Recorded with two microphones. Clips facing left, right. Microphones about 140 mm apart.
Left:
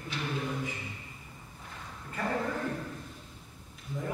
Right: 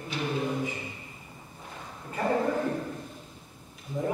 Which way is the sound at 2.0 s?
20° right (ahead or behind).